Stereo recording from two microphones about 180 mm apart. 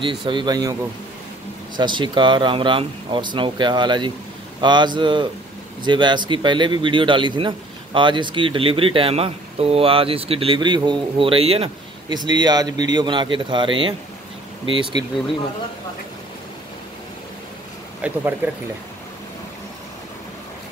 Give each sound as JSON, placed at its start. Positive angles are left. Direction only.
{"t": 0.2, "sound": "a man's voice", "side_deg": -25}
{"t": 1.8, "sound": "a man's voice", "side_deg": -25}
{"t": 18.0, "sound": "speech", "side_deg": -10}